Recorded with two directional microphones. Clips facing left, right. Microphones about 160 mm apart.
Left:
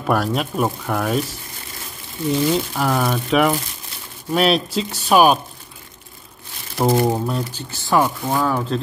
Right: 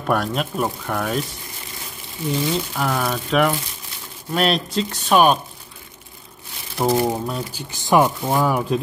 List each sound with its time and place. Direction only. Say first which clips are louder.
0.0 s speech: left 2 dB; centre (ahead or behind)
2.2 s speech: left 4 dB; 5° left (ahead or behind)
7.1 s speech: left 3 dB; centre (ahead or behind)
7.5 s speech: right 3 dB; 15° right (ahead or behind)